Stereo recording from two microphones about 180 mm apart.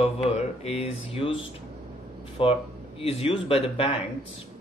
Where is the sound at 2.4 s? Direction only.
30° left (ahead or behind).